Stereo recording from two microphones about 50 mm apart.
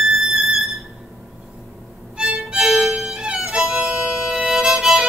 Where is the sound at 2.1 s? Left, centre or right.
Centre.